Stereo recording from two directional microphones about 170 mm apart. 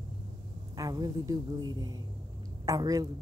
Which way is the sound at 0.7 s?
20° right (ahead or behind).